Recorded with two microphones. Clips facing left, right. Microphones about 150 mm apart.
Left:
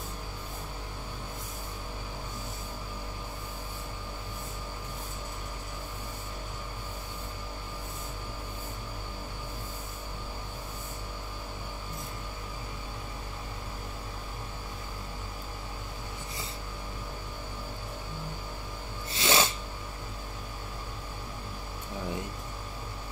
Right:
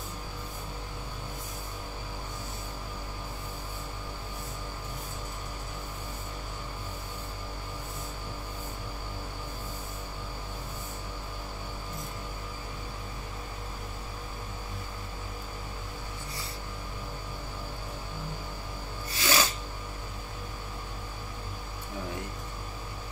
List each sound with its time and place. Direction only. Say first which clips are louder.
19.0 s snort: left 1 dB; 25° left (ahead or behind)